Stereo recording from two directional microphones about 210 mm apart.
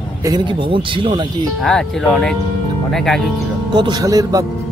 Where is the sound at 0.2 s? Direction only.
20° right (ahead or behind).